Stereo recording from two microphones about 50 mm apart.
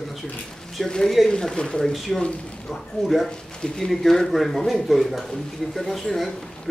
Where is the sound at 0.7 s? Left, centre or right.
Centre.